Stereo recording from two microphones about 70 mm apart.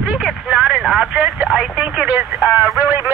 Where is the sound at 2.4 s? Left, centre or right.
Centre.